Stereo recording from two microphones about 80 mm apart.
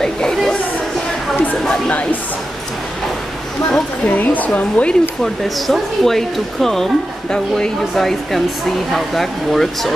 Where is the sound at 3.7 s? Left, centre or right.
Centre.